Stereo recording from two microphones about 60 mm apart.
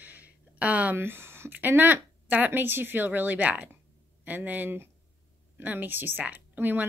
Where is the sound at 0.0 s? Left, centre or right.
Right.